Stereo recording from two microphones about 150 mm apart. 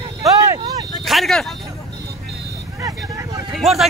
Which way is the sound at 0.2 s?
20° right (ahead or behind).